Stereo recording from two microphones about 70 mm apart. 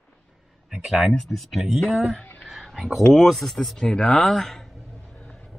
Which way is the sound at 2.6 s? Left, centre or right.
Centre.